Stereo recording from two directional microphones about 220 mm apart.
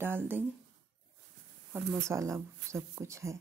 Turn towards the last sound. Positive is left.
turn(degrees=-15)  # may be behind; listen again after turning